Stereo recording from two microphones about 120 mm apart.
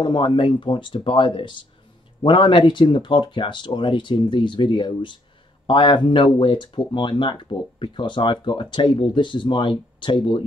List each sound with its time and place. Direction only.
0.0 s speech: 40° left (ahead or behind)